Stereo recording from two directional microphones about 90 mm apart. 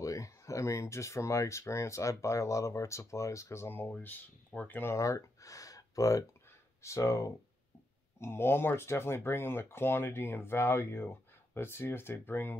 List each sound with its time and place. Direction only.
0.0 s speech: 35° left (ahead or behind); by 4.9 s 20° left (ahead or behind)
4.9 s a sound: 35° left (ahead or behind)
6.8 s speech: 30° left (ahead or behind)